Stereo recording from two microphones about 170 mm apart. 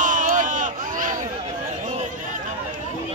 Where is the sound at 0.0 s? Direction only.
50° right (ahead or behind).